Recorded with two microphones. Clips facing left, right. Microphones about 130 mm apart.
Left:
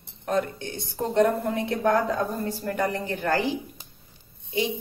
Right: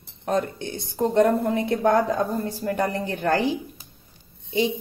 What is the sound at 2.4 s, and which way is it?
Speech, 25° right (ahead or behind).